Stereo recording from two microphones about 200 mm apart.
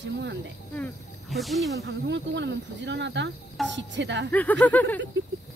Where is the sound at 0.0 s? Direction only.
65° right (ahead or behind).